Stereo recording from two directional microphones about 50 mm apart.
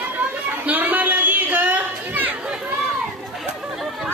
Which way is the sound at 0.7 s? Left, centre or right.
Right.